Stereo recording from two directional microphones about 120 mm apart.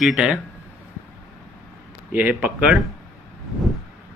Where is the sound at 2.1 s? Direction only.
15° right (ahead or behind).